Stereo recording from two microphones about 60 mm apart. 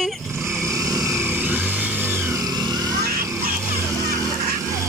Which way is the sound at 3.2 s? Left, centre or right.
Right.